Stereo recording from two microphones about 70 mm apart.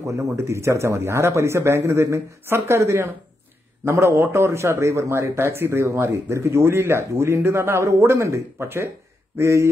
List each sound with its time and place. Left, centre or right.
0.0 s speech: right